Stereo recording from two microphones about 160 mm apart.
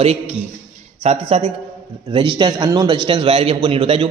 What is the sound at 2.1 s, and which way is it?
A man's voice, 30° right (ahead or behind).